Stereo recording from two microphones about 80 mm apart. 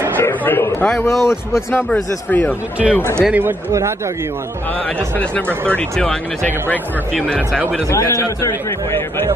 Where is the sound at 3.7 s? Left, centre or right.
Right.